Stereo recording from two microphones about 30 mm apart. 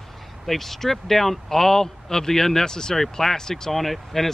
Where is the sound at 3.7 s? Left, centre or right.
Centre.